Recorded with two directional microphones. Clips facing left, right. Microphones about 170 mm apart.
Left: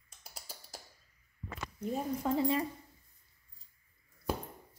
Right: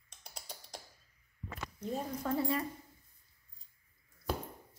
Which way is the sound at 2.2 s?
20° left (ahead or behind).